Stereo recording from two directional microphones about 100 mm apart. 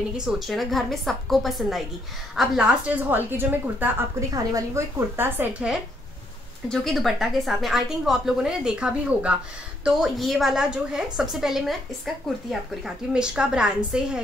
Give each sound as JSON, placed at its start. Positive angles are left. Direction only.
{"t": 0.2, "sound": "a woman's voice", "side_deg": 0}
{"t": 4.3, "sound": "a woman's voice", "side_deg": -35}
{"t": 6.7, "sound": "a woman's voice", "side_deg": 5}